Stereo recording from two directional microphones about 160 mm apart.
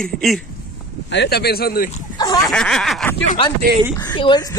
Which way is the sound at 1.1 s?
90° left.